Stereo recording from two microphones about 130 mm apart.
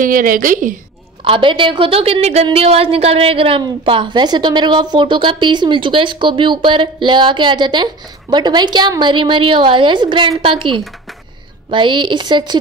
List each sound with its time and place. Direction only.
0.0 s a woman's voice: 90° right
1.2 s a woman's voice: 40° right (ahead or behind)